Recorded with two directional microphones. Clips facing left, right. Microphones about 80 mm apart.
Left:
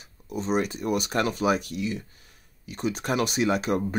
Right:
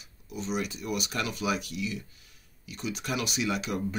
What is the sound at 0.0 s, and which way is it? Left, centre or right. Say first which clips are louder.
Speech: left 6 dB; left.